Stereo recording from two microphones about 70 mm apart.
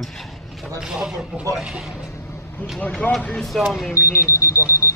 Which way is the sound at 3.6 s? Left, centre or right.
Centre.